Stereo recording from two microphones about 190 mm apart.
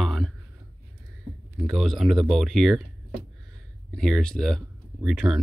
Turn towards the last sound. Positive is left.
turn(degrees=0)  # may be behind; listen again after turning